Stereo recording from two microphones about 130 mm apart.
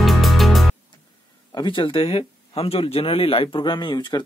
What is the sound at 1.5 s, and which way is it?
Speech, 35° left (ahead or behind).